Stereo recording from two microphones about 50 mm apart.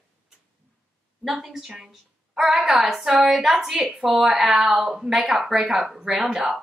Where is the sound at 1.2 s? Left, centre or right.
Centre.